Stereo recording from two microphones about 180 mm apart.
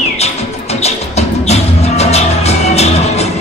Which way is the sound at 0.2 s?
35° left (ahead or behind).